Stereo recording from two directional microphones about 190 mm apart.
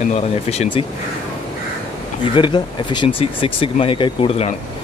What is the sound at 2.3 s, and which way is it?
Speech, 25° left (ahead or behind).